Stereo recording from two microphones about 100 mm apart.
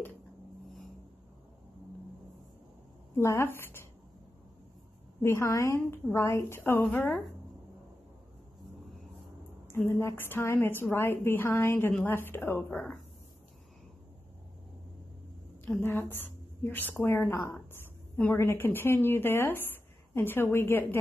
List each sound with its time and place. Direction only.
3.2 s a woman's voice: 25° left (ahead or behind)
5.2 s a woman's voice: 30° left (ahead or behind)
9.7 s a woman's voice: 25° left (ahead or behind)
15.6 s a woman's voice: 20° left (ahead or behind)
17.5 s a sound: 25° left (ahead or behind)
18.2 s a woman's voice: 25° left (ahead or behind)